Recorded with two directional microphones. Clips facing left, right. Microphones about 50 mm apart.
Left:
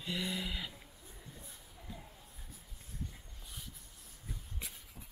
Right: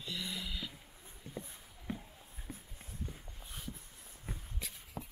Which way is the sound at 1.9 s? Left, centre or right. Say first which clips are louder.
Right 8 dB; right.